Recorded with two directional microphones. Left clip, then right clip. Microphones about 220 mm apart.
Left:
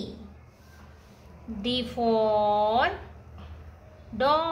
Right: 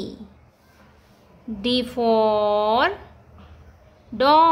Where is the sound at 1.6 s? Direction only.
40° right (ahead or behind).